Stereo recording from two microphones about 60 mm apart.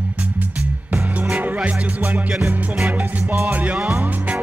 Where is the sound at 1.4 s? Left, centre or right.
Right.